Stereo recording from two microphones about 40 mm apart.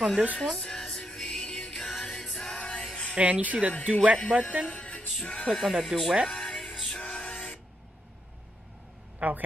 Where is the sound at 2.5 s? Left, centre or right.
Left.